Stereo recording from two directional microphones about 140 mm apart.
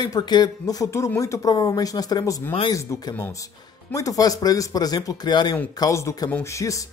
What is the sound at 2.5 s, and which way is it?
Speech, 40° left (ahead or behind).